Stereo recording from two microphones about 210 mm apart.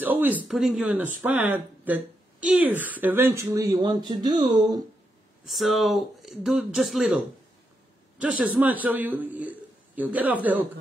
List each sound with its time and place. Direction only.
0.0 s a sound: 10° right (ahead or behind)
0.5 s a woman's voice: centre (ahead or behind); by 4.8 s 20° right (ahead or behind)
5.4 s a man's voice: centre (ahead or behind)